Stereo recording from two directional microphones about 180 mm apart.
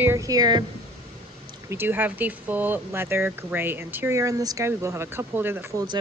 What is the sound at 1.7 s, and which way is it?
Speech, 10° right (ahead or behind).